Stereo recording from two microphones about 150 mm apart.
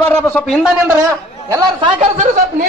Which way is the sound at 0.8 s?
20° right (ahead or behind).